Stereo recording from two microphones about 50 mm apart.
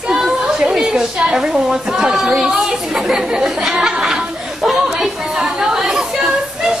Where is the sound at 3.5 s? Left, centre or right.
Centre.